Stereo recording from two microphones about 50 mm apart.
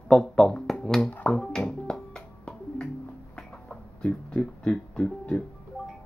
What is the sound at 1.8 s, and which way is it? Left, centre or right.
Music, centre.